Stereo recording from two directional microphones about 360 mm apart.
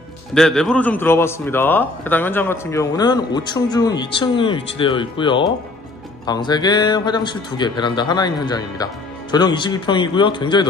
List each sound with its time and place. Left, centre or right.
0.3 s a man's voice: centre